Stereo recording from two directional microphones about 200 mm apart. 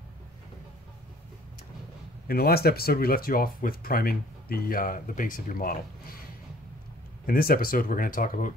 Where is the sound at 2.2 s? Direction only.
50° left (ahead or behind).